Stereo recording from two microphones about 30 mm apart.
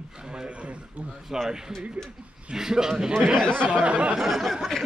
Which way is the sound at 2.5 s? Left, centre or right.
Centre.